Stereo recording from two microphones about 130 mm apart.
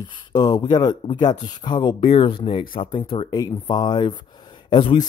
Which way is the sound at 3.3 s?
30° left (ahead or behind).